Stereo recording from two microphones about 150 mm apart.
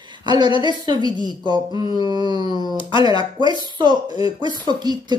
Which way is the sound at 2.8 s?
35° left (ahead or behind).